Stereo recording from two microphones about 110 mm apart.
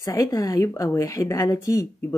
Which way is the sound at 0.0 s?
30° left (ahead or behind).